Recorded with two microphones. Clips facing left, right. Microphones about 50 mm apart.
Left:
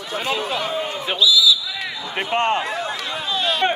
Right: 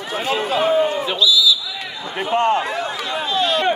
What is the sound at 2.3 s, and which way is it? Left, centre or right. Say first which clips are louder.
Speech: right 3 dB; left.